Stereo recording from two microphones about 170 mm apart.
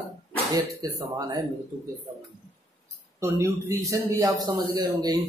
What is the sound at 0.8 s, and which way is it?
Speech, 20° right (ahead or behind).